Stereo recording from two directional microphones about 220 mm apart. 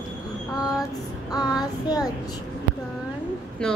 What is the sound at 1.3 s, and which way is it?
Child singing, 15° left (ahead or behind).